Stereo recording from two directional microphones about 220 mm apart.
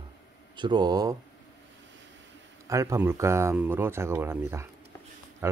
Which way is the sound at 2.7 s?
15° right (ahead or behind).